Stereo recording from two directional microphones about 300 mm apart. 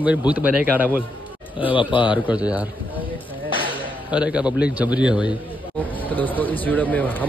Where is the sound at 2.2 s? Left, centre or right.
Centre.